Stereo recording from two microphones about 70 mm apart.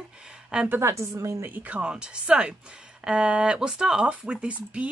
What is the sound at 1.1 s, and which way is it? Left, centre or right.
Speech, right.